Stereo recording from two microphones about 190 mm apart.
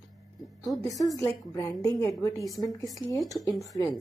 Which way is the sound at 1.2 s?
15° left (ahead or behind).